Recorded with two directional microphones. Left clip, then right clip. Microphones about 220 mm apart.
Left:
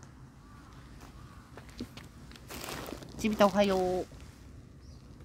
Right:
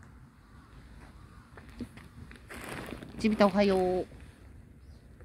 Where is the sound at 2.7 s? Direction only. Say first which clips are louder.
Even; 20° right (ahead or behind).